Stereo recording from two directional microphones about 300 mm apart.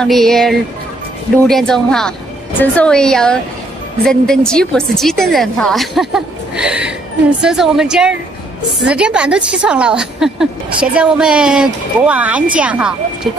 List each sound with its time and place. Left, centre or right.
0.0 s a woman's voice: centre